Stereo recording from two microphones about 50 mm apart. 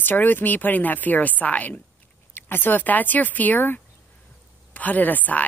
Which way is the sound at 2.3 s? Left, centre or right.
Left.